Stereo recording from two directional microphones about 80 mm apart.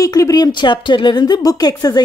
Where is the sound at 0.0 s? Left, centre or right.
Left.